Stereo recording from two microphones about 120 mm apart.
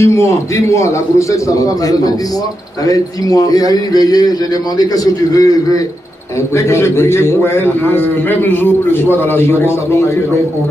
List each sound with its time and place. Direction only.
0.0 s a man's voice: 25° left (ahead or behind)